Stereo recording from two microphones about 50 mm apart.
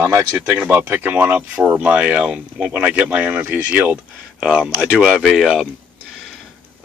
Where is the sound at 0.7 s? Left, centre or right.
Right.